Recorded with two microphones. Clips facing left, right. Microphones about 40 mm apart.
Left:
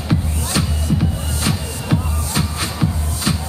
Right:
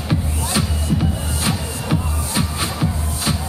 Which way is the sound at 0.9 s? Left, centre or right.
Centre.